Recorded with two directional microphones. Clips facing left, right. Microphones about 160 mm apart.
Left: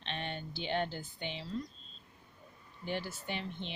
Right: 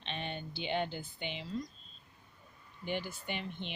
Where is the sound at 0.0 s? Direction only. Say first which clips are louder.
Even; 5° right (ahead or behind).